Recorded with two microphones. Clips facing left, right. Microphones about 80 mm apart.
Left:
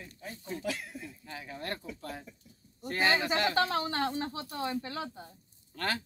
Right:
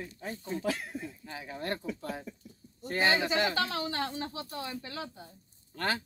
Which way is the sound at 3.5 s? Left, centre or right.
Left.